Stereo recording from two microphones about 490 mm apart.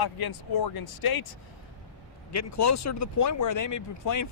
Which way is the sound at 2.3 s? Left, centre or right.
Left.